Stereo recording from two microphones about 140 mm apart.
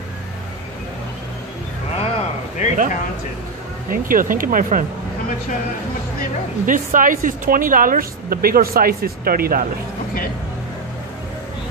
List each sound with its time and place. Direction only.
2.0 s a sound: 55° left (ahead or behind)
3.9 s speech: 80° right
6.6 s speech: 75° right (ahead or behind); by 9.7 s 90° right